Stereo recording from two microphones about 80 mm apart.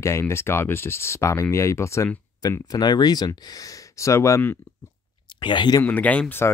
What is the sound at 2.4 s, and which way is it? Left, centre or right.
Speech, left.